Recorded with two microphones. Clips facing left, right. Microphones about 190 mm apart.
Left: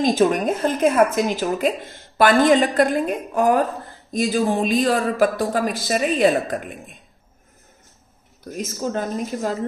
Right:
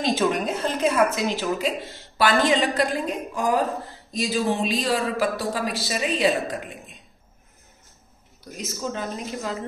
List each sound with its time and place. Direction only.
0.0 s a woman's voice: 45° left (ahead or behind)
8.5 s a woman's voice: 50° left (ahead or behind)